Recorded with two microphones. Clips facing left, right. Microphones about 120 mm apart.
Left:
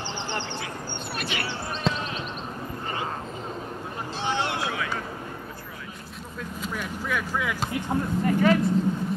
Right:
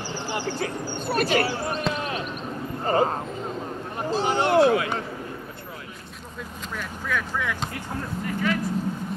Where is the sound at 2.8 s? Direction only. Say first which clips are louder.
Right 11 dB; 40° right (ahead or behind).